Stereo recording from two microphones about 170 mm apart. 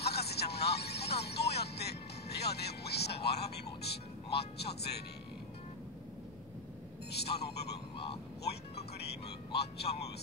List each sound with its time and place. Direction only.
0.0 s music: 70° left (ahead or behind)
7.1 s a sound: 75° left (ahead or behind)
8.9 s music: 75° left (ahead or behind)